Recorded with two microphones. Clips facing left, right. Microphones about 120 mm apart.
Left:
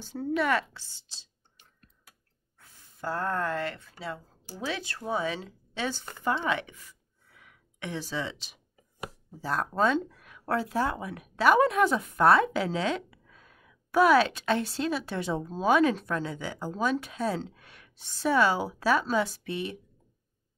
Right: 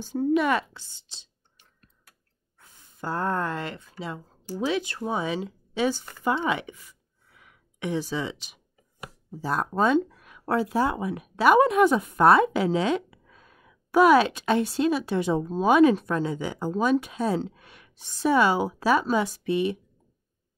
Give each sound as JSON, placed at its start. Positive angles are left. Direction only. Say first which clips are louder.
{"t": 0.0, "sound": "speech", "louder": "right 6 dB", "side_deg": -15}
{"t": 2.6, "sound": "speech", "louder": "right 1 dB", "side_deg": -20}